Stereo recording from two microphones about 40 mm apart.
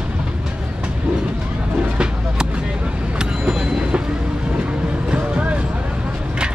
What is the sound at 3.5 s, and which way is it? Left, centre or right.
Train, centre.